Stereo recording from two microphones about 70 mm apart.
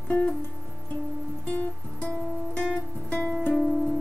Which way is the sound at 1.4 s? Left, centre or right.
Left.